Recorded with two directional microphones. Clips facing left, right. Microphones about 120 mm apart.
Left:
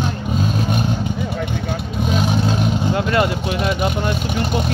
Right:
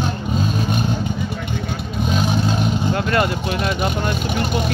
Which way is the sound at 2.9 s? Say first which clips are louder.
Left 2 dB; 20° left (ahead or behind).